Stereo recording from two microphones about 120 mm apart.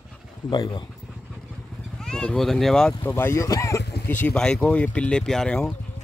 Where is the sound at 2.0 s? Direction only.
5° left (ahead or behind).